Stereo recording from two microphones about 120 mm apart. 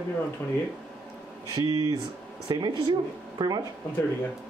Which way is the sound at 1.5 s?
35° right (ahead or behind).